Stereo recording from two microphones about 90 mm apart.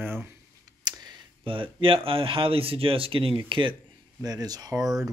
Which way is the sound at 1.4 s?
75° right (ahead or behind).